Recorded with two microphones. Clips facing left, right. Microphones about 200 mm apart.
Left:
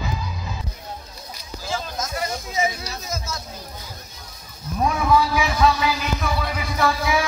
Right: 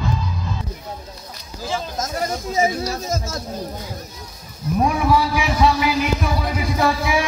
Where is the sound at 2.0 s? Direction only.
45° right (ahead or behind).